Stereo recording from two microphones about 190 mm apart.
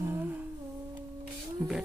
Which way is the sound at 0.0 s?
10° right (ahead or behind).